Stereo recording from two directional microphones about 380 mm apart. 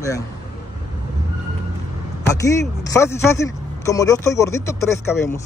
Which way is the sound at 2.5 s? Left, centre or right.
Centre.